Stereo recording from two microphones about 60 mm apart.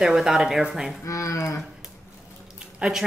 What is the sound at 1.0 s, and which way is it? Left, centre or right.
Speech, left.